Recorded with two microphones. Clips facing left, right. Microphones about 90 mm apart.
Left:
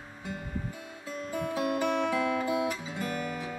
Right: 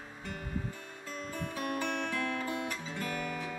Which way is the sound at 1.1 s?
10° left (ahead or behind).